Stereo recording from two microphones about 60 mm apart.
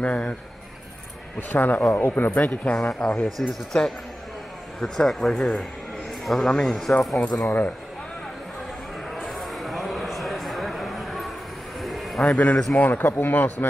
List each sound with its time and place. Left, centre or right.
0.0 s a sound: left
1.5 s speech: left
2.3 s a man's voice: left; by 7.2 s centre
9.1 s a sound: centre
12.3 s speech: centre
12.7 s speech: left